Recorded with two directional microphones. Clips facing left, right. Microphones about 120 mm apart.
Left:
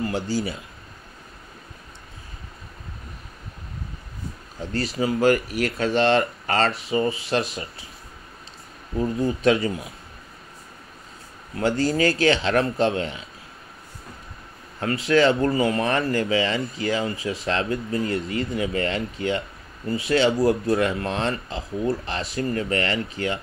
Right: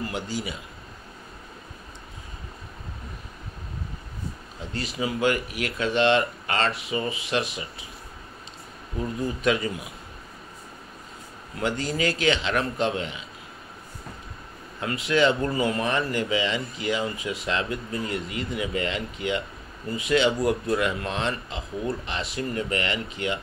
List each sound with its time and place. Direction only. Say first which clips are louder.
0.0 s speech: left 5 dB; 30° left (ahead or behind)
4.7 s speech: left 5 dB; 40° left (ahead or behind)
8.9 s speech: left 5 dB; 30° left (ahead or behind)
11.5 s speech: left 6 dB; 35° left (ahead or behind)
15.0 s speech: left 3 dB; 35° left (ahead or behind)
16.0 s speech: left 3 dB; 20° right (ahead or behind)
16.3 s speech: left 3 dB; 35° left (ahead or behind)